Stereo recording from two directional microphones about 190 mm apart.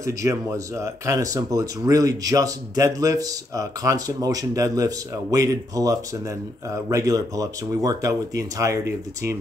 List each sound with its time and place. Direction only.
0.0 s speech: 15° right (ahead or behind)